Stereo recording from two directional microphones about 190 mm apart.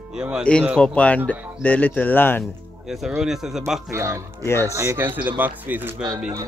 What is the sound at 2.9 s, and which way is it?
Speech, centre (ahead or behind).